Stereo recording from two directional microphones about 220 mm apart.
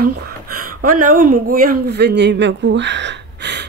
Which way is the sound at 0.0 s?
90° right.